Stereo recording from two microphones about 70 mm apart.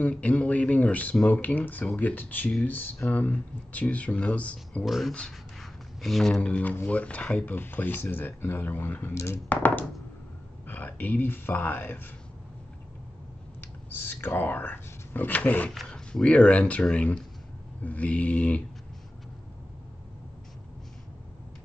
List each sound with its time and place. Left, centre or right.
0.0 s speech: centre
4.8 s speech: centre; by 9.1 s left
9.1 s speech: left
9.5 s speech: left
13.6 s speech: left
15.7 s speech: centre